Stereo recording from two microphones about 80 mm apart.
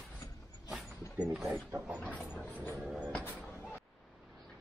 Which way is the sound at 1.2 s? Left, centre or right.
Centre.